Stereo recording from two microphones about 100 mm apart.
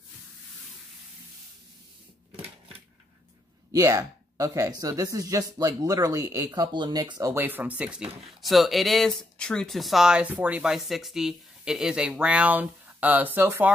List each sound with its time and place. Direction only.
3.7 s speech: 30° right (ahead or behind)
6.6 s speech: 45° right (ahead or behind)
7.3 s speech: 20° right (ahead or behind)